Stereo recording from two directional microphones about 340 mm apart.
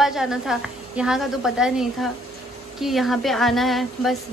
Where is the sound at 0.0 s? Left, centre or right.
Centre.